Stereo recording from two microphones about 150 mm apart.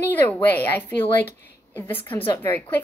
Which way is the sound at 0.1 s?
15° left (ahead or behind).